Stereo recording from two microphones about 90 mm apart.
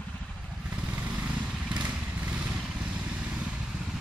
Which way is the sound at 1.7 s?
15° right (ahead or behind).